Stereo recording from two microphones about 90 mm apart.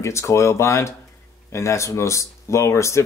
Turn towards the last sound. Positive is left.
turn(degrees=35)  # may be behind; listen again after turning